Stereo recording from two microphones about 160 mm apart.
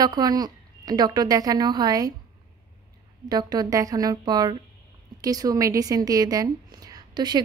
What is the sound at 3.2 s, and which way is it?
A woman's voice, 25° right (ahead or behind).